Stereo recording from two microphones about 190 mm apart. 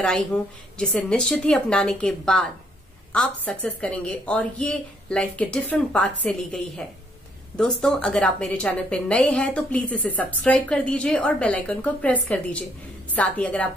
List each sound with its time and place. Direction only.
0.0 s a woman's voice: 5° left (ahead or behind)